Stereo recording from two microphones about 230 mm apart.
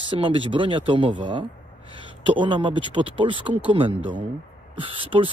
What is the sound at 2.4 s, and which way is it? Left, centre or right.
Speech, centre.